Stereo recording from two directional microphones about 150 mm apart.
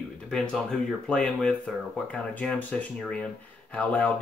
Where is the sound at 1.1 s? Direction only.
5° left (ahead or behind).